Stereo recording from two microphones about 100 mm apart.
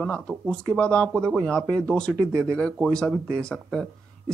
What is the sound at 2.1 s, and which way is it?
Speech, 30° right (ahead or behind).